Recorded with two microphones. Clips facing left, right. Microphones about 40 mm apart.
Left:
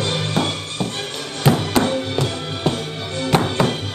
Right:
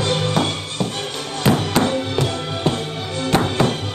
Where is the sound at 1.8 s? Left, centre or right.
Centre.